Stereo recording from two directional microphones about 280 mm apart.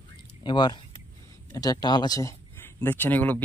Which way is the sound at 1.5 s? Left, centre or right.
Centre.